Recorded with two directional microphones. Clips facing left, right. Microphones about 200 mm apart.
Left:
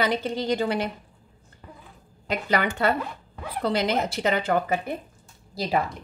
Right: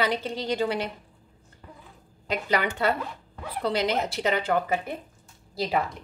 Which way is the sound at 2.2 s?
50° left (ahead or behind).